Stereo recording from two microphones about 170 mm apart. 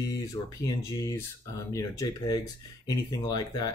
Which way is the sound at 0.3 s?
20° left (ahead or behind).